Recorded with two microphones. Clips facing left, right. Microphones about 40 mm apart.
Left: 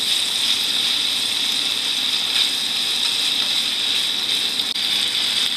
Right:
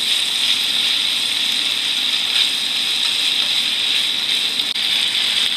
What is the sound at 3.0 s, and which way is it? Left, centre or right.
Water, right.